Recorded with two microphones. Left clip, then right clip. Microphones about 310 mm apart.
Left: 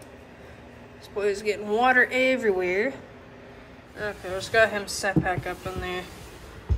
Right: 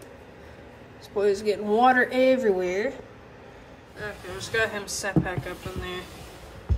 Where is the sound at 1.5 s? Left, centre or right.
Centre.